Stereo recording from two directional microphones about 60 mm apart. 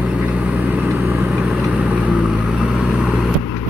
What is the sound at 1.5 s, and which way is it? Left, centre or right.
Vehicle, centre.